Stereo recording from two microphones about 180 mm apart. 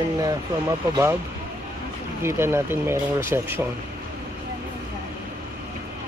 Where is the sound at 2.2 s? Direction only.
15° right (ahead or behind).